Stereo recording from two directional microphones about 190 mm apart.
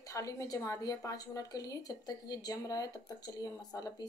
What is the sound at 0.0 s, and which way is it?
A woman's voice, 15° left (ahead or behind).